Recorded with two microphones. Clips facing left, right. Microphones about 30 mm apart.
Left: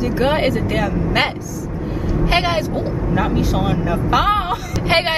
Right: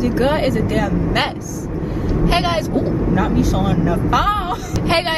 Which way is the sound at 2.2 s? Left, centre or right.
Centre.